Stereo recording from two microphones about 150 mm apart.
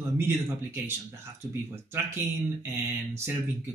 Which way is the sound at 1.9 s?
15° right (ahead or behind).